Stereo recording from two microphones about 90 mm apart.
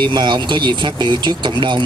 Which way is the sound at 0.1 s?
60° right (ahead or behind).